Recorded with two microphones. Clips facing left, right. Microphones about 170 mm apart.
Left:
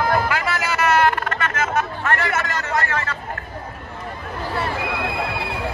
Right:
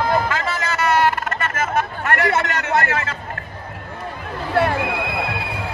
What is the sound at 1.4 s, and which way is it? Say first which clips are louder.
Chatter: right 1 dB; 50° right (ahead or behind).